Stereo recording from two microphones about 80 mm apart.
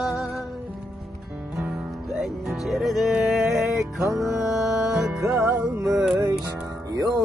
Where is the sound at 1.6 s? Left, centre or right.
Centre.